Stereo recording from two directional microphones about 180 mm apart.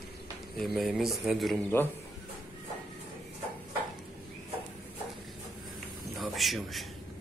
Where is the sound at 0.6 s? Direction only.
Centre (ahead or behind).